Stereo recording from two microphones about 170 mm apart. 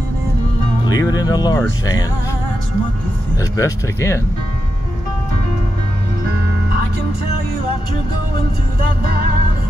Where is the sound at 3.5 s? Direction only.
15° left (ahead or behind).